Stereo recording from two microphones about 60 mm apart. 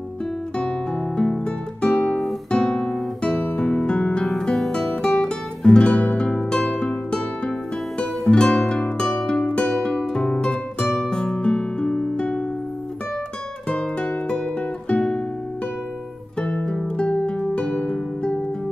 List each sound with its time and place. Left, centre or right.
0.6 s music: centre
4.3 s music: centre
13.7 s music: centre
16.3 s music: centre